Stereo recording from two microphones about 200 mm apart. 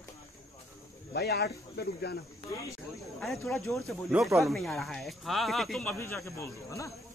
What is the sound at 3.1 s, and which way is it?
Speech, centre (ahead or behind).